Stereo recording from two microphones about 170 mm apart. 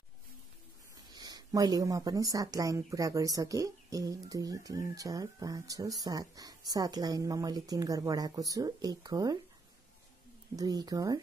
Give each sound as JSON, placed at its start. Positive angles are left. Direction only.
{"t": 1.1, "sound": "speech", "side_deg": -20}
{"t": 10.5, "sound": "speech", "side_deg": -20}